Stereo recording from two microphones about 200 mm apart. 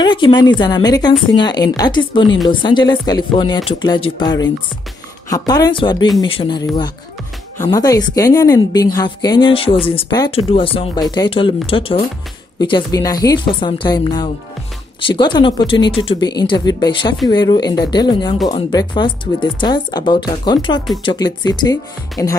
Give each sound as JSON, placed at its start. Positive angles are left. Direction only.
{"t": 0.0, "sound": "speech", "side_deg": 20}